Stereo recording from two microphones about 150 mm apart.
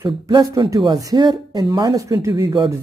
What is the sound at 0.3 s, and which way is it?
Speech, 25° right (ahead or behind).